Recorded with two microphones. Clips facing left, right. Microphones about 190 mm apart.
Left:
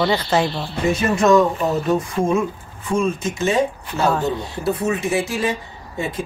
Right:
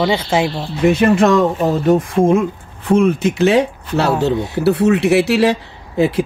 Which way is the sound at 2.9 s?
65° right (ahead or behind).